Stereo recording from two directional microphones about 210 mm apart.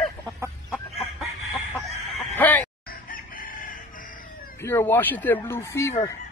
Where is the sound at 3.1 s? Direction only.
40° left (ahead or behind).